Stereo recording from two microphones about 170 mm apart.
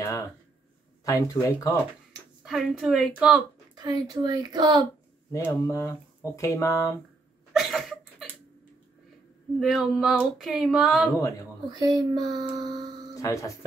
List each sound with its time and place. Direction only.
0.0 s a sound: 20° left (ahead or behind)
1.0 s speech: 20° left (ahead or behind)
2.4 s female singing: centre (ahead or behind)
3.7 s a woman's voice: 20° right (ahead or behind)
5.3 s speech: 20° left (ahead or behind)
7.5 s a sound: centre (ahead or behind)
9.6 s female singing: centre (ahead or behind)
11.7 s a woman's voice: 25° right (ahead or behind)
13.1 s speech: 20° left (ahead or behind)